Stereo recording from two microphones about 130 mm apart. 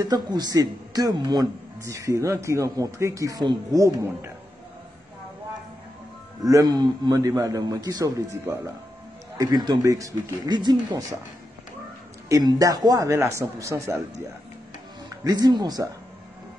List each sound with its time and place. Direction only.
0.0 s speech: 30° right (ahead or behind)
6.4 s speech: 30° right (ahead or behind)
12.3 s speech: 30° right (ahead or behind)
15.2 s speech: 30° right (ahead or behind)